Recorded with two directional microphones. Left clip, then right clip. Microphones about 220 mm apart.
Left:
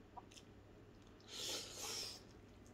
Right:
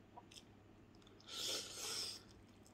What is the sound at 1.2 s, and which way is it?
Filing, 5° right (ahead or behind).